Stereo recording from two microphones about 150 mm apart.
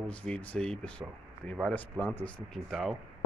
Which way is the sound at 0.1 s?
10° left (ahead or behind).